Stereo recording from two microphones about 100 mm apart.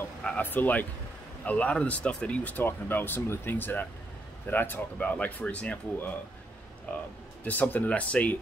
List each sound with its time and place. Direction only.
0.2 s speech: 15° left (ahead or behind)